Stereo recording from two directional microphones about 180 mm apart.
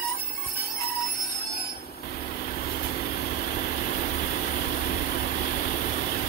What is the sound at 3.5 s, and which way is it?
Vehicle, 45° left (ahead or behind).